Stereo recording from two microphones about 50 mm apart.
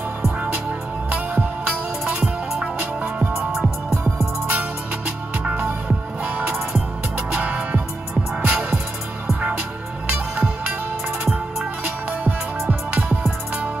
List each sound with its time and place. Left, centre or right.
0.7 s music: right
4.5 s music: right
10.0 s music: right
11.8 s music: right